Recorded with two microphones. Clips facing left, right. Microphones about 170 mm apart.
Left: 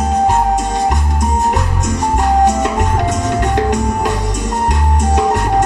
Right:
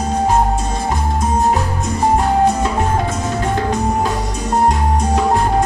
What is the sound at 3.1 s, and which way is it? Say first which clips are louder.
Music: left 3 dB; 70° left (ahead or behind).